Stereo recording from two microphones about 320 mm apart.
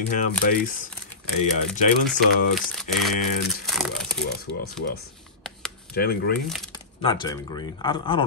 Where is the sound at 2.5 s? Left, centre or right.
Centre.